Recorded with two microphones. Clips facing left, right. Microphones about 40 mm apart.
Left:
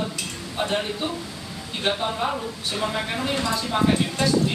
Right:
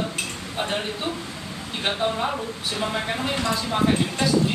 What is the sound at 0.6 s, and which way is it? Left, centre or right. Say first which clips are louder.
Speech: left 2 dB; centre.